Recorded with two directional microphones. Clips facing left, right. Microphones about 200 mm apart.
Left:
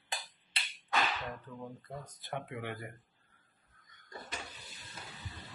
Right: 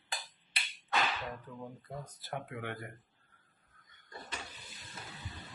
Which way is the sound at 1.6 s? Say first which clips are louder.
Even; 5° right (ahead or behind).